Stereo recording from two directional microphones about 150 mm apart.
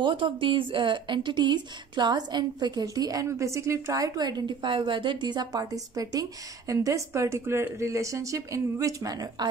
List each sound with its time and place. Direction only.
0.0 s speech: 35° right (ahead or behind)